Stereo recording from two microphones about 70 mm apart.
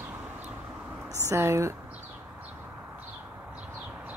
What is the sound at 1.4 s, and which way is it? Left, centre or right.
Speech, right.